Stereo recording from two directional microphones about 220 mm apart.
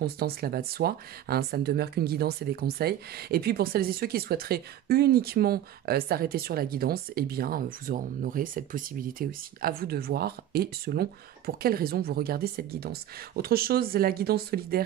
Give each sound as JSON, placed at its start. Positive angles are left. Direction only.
{"t": 0.0, "sound": "speech", "side_deg": -45}